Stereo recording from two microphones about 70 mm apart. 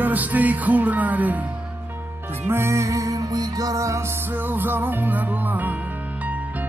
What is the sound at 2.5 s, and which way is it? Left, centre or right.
Music, right.